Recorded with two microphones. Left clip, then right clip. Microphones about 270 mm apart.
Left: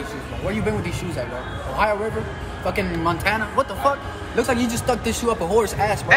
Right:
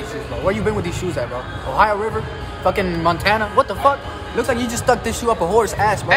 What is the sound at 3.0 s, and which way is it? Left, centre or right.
Speech, right.